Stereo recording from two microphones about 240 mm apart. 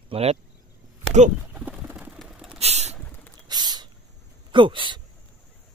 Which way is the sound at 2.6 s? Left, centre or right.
Right.